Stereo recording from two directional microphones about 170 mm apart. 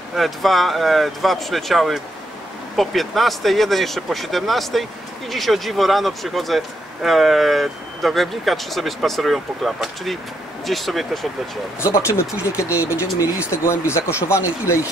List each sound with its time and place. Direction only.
0.1 s speech: centre (ahead or behind)
11.8 s speech: 15° left (ahead or behind)